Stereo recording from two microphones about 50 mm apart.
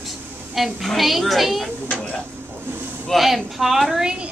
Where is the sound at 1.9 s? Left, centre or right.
Left.